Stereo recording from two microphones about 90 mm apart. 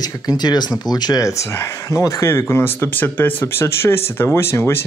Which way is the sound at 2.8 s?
20° left (ahead or behind).